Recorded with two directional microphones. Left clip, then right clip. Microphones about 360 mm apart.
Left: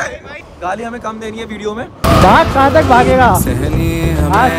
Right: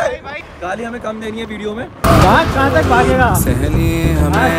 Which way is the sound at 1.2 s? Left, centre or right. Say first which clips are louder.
Left 1 dB; centre.